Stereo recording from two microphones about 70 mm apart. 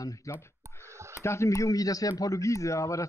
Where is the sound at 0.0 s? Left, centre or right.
Left.